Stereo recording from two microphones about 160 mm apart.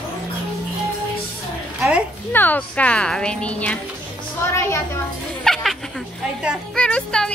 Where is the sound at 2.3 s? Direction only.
10° left (ahead or behind).